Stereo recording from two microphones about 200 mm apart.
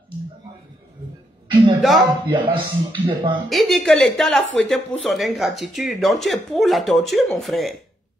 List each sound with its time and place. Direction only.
1.5 s a sound: 25° right (ahead or behind)
1.8 s speech: centre (ahead or behind)
2.2 s speech: 25° right (ahead or behind)
3.4 s speech: centre (ahead or behind)